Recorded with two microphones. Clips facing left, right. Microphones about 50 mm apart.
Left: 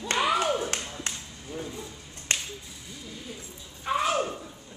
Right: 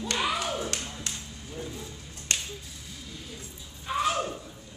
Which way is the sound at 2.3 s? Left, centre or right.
Left.